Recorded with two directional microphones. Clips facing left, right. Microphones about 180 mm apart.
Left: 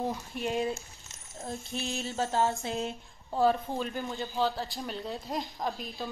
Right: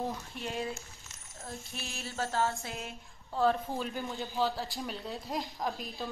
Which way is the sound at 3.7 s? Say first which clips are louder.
Left 2 dB; centre (ahead or behind).